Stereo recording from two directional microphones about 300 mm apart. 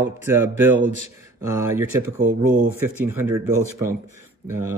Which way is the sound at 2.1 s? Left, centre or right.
Right.